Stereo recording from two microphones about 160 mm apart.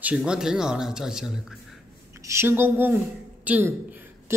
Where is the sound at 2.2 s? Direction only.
15° right (ahead or behind).